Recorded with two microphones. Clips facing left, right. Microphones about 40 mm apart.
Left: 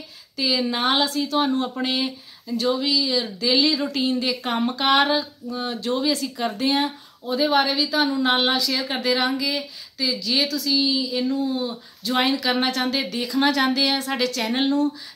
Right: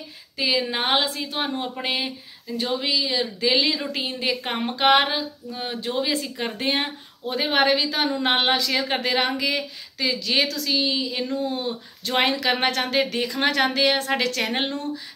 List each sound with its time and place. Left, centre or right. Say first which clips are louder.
0.4 s a woman's voice: left 1 dB; right